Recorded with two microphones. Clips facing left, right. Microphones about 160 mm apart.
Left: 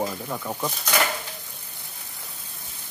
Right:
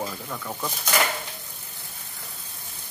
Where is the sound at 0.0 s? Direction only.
15° left (ahead or behind).